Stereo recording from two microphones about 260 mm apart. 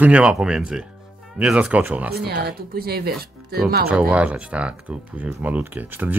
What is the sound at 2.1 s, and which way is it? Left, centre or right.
Speech, right.